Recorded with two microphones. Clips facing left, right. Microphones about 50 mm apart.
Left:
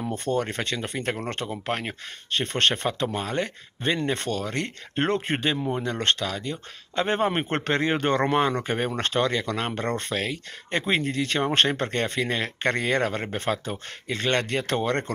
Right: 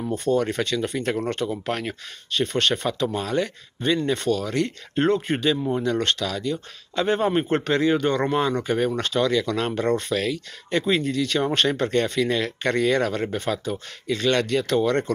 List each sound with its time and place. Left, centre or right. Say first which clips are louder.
0.1 s speech: right 6 dB; left
0.4 s speech: right 4 dB; left
2.3 s speech: right 1 dB; left
2.9 s speech: right 3 dB; left
3.8 s speech: right 3 dB; left
4.4 s speech: right 4 dB; left
5.1 s speech: right 3 dB; left
5.7 s speech: right 2 dB; left
7.6 s speech: right 3 dB; left